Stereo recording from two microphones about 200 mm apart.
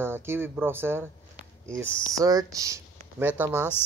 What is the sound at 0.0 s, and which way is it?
Speech, 10° right (ahead or behind).